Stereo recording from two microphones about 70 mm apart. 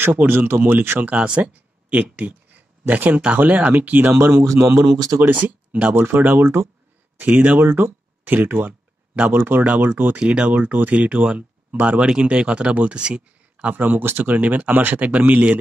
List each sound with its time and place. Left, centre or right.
0.0 s speech: right
1.1 s speech: centre; by 4.8 s right
4.9 s speech: right
5.2 s speech: right
6.4 s speech: right
7.2 s speech: right
10.1 s speech: centre